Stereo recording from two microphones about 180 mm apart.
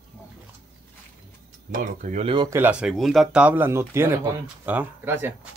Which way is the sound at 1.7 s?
45° right (ahead or behind).